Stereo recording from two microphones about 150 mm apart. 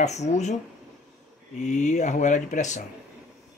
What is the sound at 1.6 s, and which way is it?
Speech, 50° left (ahead or behind).